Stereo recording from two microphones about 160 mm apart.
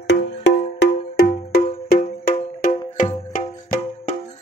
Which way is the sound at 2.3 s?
50° left (ahead or behind).